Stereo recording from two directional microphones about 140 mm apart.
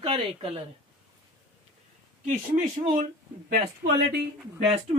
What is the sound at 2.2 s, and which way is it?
Speech, 65° right (ahead or behind).